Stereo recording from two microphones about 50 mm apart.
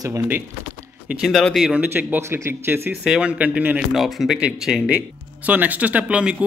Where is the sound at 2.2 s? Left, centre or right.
Right.